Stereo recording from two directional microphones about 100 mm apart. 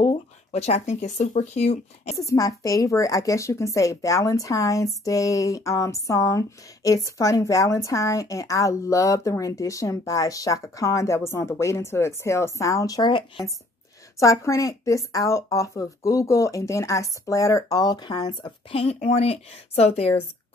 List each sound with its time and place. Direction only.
0.1 s a sound: 90° left
2.1 s a woman's voice: 35° left (ahead or behind)
14.2 s a woman's voice: 35° left (ahead or behind)
18.7 s speech: 80° left